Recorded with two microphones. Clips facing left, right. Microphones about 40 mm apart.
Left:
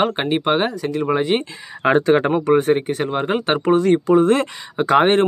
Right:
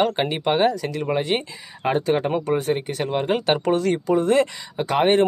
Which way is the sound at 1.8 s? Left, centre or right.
Left.